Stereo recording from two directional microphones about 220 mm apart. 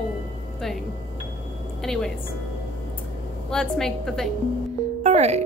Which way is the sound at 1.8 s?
Centre (ahead or behind).